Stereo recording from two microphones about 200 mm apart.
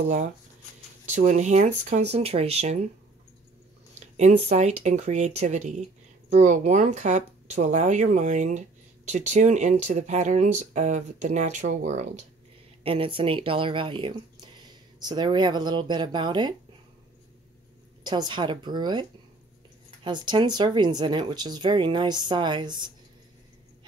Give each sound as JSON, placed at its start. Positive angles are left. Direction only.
{"t": 1.0, "sound": "speech", "side_deg": -35}
{"t": 4.5, "sound": "speech", "side_deg": -35}
{"t": 18.0, "sound": "speech", "side_deg": -20}